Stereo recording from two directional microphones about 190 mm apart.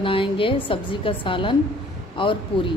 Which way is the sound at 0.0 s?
25° left (ahead or behind).